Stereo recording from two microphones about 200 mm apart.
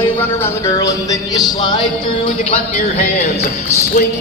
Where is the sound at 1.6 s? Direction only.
20° left (ahead or behind).